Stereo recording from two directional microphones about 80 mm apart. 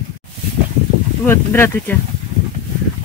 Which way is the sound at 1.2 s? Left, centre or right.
Left.